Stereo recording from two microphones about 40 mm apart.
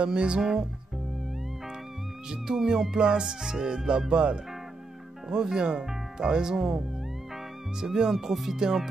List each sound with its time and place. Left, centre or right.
0.0 s speech: right
0.4 s music: centre
2.2 s music: centre
4.1 s speech: right
7.8 s music: centre
8.1 s music: centre